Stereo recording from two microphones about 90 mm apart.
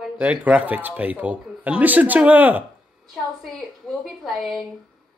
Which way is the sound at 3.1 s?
Centre (ahead or behind).